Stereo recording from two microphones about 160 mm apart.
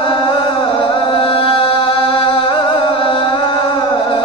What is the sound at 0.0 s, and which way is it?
Chant, 35° left (ahead or behind).